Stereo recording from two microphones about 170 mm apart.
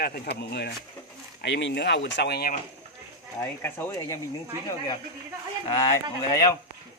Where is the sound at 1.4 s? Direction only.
90° left; by 2.5 s 65° left (ahead or behind).